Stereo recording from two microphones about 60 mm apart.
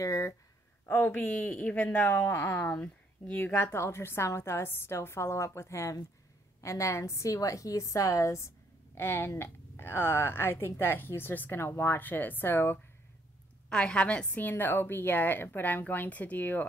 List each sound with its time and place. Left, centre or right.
0.0 s speech: left
0.8 s a woman's voice: left
1.4 s speech: left
2.1 s a woman's voice: left
2.6 s speech: left
3.5 s a woman's voice: left
8.9 s a woman's voice: left
13.7 s a woman's voice: centre
14.4 s a woman's voice: left